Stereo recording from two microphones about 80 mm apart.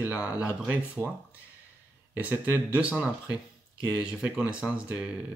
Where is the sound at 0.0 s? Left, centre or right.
Centre.